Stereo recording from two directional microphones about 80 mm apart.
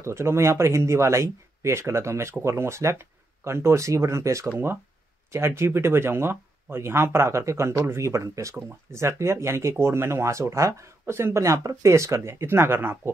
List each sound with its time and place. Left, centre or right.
0.0 s speech: right